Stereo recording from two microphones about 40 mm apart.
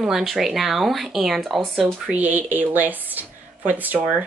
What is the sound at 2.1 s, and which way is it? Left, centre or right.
Speech, right.